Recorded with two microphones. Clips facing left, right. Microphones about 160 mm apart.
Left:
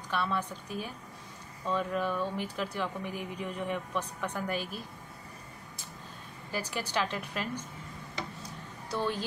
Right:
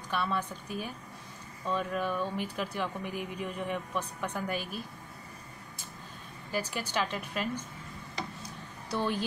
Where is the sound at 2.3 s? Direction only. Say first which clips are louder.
Right 1 dB; 55° right (ahead or behind).